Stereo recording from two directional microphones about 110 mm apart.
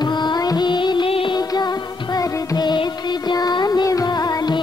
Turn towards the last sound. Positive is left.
turn(degrees=35)  # may be behind; listen again after turning